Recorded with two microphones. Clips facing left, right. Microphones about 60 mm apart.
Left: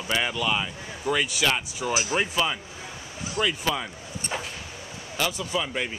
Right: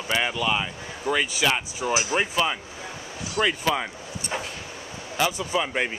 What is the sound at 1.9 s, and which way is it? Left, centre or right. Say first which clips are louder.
Speech: right 1 dB; centre.